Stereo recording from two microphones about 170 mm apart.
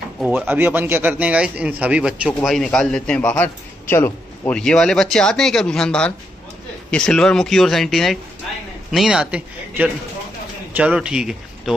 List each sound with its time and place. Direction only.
0.3 s a man's voice: 10° right (ahead or behind)